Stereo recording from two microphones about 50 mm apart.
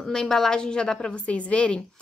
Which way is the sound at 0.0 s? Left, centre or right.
Centre.